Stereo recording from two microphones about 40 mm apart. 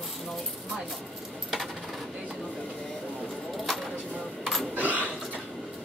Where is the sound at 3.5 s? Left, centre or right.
Centre.